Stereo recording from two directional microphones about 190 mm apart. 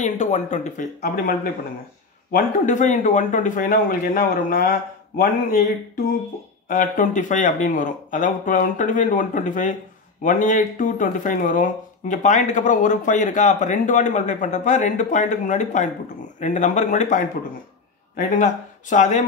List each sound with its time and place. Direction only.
0.0 s speech: 40° left (ahead or behind)